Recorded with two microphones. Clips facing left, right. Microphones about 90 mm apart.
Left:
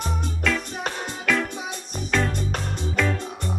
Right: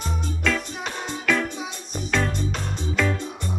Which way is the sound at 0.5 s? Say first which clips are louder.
Even; centre (ahead or behind).